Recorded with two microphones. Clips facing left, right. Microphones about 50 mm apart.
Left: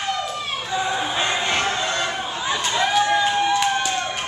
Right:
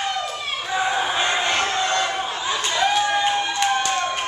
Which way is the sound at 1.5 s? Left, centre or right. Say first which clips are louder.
Right 1 dB; centre.